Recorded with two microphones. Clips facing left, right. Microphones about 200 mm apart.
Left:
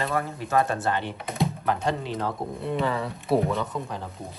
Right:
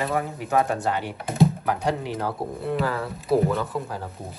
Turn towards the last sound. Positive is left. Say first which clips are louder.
# right 2 dB
turn(degrees=-5)  # may be behind; listen again after turning